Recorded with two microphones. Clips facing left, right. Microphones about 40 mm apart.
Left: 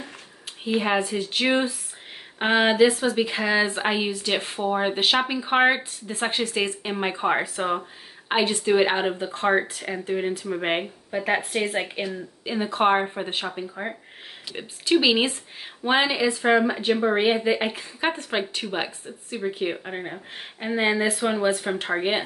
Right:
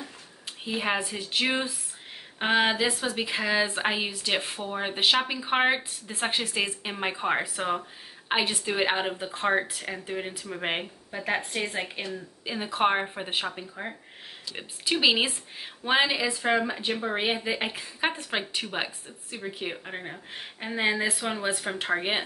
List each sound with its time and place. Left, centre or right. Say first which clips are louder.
0.7 s a woman's voice: left 5 dB; centre
12.4 s speech: left 4 dB; centre
14.6 s speech: left 4 dB; centre
19.0 s speech: left 8 dB; centre